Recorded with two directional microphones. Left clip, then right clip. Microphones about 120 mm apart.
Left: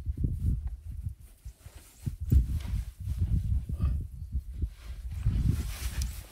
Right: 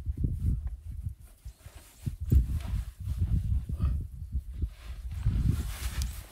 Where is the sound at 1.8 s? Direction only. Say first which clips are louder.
Even; centre (ahead or behind).